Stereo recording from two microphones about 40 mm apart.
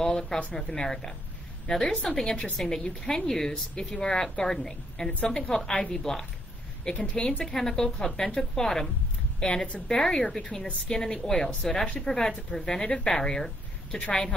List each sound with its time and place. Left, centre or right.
0.0 s a sound: centre
0.6 s a woman's voice: centre
7.4 s a woman's voice: centre